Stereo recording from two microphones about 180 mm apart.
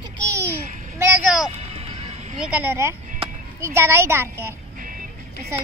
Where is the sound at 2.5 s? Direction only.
10° right (ahead or behind).